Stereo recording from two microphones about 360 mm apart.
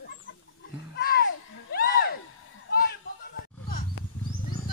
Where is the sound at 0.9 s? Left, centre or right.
Left.